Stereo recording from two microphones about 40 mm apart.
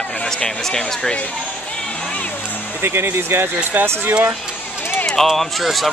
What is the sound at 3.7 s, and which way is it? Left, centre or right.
Speech, right.